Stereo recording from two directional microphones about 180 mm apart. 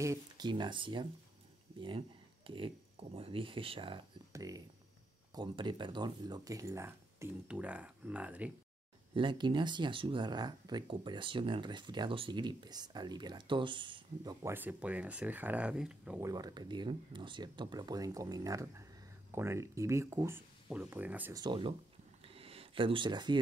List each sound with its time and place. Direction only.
0.0 s speech: 20° right (ahead or behind)
4.3 s speech: 20° right (ahead or behind)
9.1 s speech: 25° right (ahead or behind)
14.4 s speech: 10° right (ahead or behind)
16.2 s speech: 20° right (ahead or behind)
21.3 s speech: 25° right (ahead or behind)
22.2 s a sound: 30° right (ahead or behind)